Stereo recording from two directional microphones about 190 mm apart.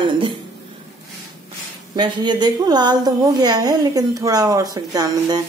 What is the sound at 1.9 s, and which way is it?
A woman's voice, 25° right (ahead or behind).